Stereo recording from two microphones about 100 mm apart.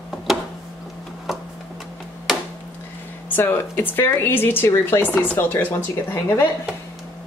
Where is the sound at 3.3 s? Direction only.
20° left (ahead or behind).